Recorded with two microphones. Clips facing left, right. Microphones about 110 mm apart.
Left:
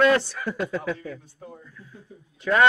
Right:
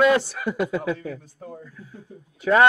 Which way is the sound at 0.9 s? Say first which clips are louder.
Right 3 dB; 40° right (ahead or behind).